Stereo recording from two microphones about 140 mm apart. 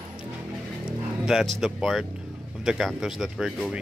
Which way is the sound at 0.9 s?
5° right (ahead or behind).